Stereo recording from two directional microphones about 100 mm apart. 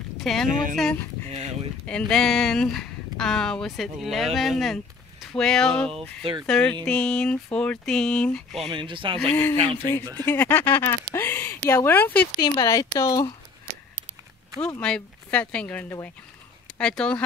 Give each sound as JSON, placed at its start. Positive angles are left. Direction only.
{"t": 0.2, "sound": "speech", "side_deg": 5}
{"t": 8.7, "sound": "speech", "side_deg": -55}
{"t": 9.3, "sound": "speech", "side_deg": 15}
{"t": 12.4, "sound": "speech", "side_deg": 35}
{"t": 14.8, "sound": "speech", "side_deg": 10}